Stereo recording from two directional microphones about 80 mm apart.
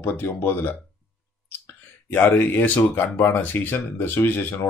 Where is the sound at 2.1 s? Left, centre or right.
Left.